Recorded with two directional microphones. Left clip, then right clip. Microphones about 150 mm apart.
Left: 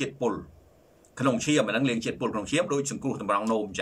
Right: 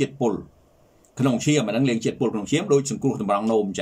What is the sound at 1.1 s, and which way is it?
Speech, 30° right (ahead or behind).